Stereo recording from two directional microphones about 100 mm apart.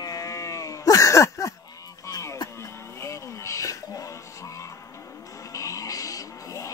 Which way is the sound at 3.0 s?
30° left (ahead or behind).